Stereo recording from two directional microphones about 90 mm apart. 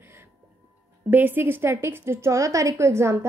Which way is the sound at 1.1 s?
20° right (ahead or behind).